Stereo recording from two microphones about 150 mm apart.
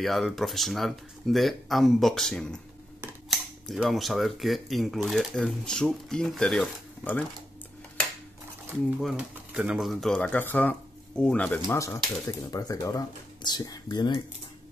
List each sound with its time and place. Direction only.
0.0 s speech: centre (ahead or behind)
9.1 s speech: 10° right (ahead or behind); by 14.2 s 30° left (ahead or behind)